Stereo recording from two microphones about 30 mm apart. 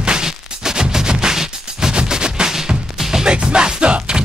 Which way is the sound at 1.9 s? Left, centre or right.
Right.